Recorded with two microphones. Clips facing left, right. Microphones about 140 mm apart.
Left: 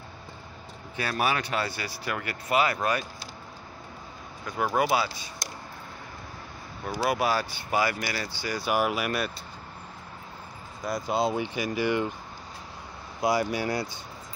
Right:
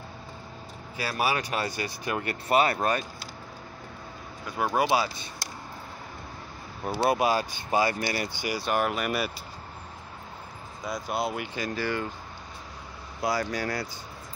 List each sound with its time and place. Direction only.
0.9 s speech: 30° right (ahead or behind)
1.2 s speech: 15° right (ahead or behind); by 3.1 s 35° right (ahead or behind)
4.6 s speech: 20° right (ahead or behind)
7.1 s speech: 20° right (ahead or behind)
8.5 s speech: 5° left (ahead or behind)
10.8 s speech: centre (ahead or behind)
11.1 s speech: 25° left (ahead or behind)
13.2 s speech: 15° left (ahead or behind)